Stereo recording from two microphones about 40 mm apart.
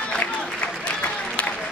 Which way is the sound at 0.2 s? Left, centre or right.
Left.